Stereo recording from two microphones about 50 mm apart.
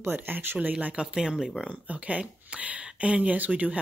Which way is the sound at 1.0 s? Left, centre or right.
Centre.